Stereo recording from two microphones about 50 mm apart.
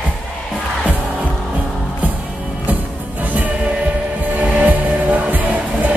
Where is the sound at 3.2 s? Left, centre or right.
Right.